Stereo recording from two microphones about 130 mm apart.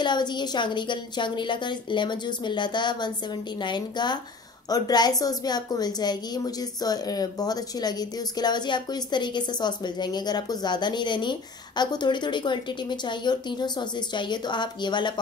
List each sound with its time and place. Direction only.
0.0 s a woman's voice: 35° left (ahead or behind)